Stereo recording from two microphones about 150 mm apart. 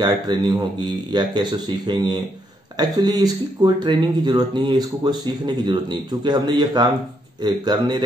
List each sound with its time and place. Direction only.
0.0 s speech: 30° right (ahead or behind)